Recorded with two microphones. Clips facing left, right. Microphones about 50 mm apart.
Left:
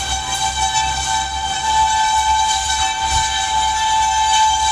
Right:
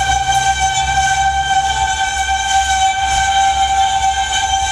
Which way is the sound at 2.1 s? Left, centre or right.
Right.